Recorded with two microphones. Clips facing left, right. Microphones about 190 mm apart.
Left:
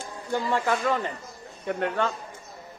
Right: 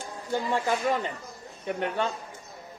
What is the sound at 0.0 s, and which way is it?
Speech, 15° right (ahead or behind).